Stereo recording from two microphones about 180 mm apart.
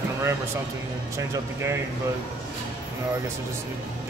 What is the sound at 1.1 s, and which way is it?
Speech, 15° right (ahead or behind).